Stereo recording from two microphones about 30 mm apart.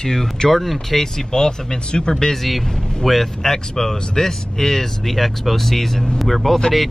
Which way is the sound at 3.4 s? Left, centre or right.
Centre.